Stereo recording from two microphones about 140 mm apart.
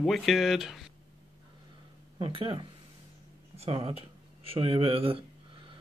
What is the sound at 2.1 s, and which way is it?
Speech, 40° right (ahead or behind).